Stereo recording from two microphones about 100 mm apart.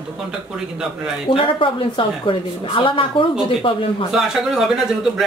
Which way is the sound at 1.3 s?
60° left (ahead or behind).